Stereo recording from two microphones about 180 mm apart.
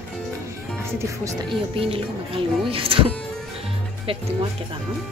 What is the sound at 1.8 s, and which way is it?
Speech, 30° right (ahead or behind).